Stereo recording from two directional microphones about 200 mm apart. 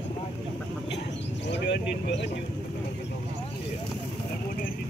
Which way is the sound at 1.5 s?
60° left (ahead or behind).